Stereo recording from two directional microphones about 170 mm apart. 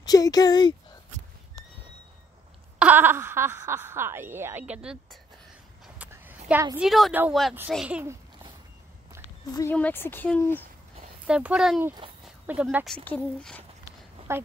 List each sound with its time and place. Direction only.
0.0 s speech: 20° left (ahead or behind)
2.8 s speech: 10° right (ahead or behind)
5.9 s a sound: 10° right (ahead or behind)
6.8 s speech: centre (ahead or behind)
9.5 s speech: 20° left (ahead or behind)
11.2 s speech: 5° right (ahead or behind)
12.0 s a sound: 35° right (ahead or behind)
12.5 s speech: 10° right (ahead or behind)
12.8 s speech: 5° left (ahead or behind)
14.3 s speech: 15° right (ahead or behind)